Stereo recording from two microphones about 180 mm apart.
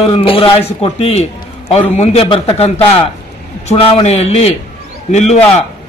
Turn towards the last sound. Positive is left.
turn(degrees=40)  # may be behind; listen again after turning